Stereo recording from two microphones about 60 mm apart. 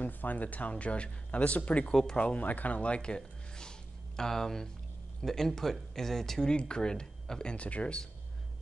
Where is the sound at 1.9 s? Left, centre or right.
Centre.